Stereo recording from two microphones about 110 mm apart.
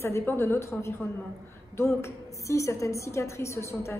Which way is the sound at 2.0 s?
25° left (ahead or behind).